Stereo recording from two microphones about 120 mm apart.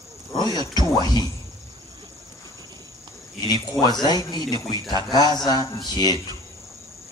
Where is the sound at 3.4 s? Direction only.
35° left (ahead or behind).